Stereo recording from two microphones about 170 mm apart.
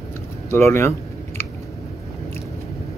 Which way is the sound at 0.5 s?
15° left (ahead or behind).